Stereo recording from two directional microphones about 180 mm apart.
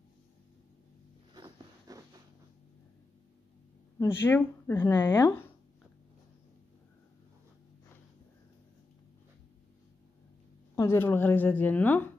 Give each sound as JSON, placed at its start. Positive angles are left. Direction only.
{"t": 1.3, "sound": "a sound", "side_deg": -20}
{"t": 4.0, "sound": "speech", "side_deg": 10}
{"t": 10.8, "sound": "speech", "side_deg": 15}